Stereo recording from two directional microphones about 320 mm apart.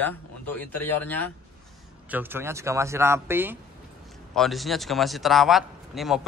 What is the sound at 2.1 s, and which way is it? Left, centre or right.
A man's voice, centre.